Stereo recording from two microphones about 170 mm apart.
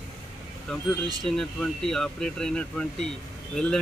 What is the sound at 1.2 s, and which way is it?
Speech, centre (ahead or behind).